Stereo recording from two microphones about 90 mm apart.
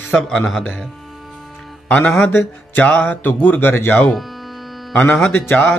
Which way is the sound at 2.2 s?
20° left (ahead or behind).